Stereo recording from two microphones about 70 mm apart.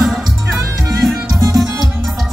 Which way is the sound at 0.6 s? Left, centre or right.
Right.